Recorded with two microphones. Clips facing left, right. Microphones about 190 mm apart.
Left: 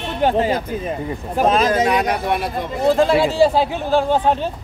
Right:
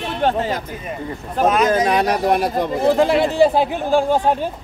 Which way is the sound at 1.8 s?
35° right (ahead or behind).